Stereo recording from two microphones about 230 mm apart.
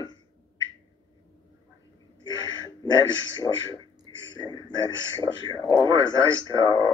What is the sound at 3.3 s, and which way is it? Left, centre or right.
Speech, centre.